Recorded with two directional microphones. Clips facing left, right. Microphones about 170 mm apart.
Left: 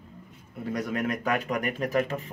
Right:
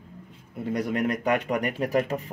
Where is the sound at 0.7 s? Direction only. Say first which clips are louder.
Right 3 dB; 30° right (ahead or behind).